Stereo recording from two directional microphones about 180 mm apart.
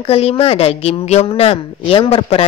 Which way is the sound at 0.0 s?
35° left (ahead or behind).